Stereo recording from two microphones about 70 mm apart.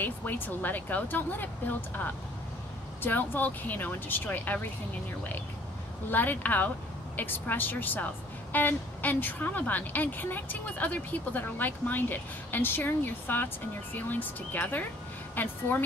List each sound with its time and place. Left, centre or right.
0.0 s a woman's voice: left
3.0 s a woman's voice: left
6.0 s a woman's voice: left